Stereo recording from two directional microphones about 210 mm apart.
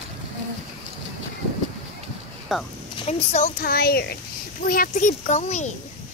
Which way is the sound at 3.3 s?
30° left (ahead or behind).